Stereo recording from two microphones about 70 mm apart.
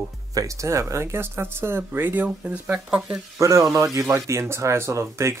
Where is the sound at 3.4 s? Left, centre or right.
Right.